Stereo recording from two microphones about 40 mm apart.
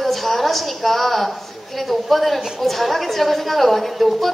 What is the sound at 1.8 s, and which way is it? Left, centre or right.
A woman's voice, centre.